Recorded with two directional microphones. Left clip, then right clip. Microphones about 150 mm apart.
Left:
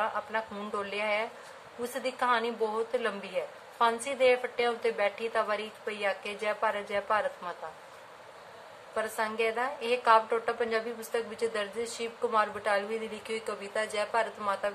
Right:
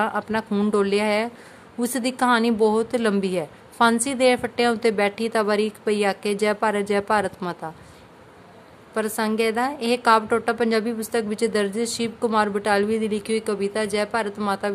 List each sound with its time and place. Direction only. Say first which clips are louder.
0.0 s a woman's voice: right 7 dB; 90° right
8.9 s a woman's voice: right 7 dB; 90° right